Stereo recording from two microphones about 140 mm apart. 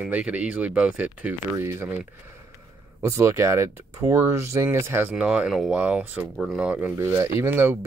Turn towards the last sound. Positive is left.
turn(degrees=-15)  # may be behind; listen again after turning